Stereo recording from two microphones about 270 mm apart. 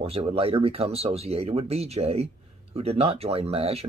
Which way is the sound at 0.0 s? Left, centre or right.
Right.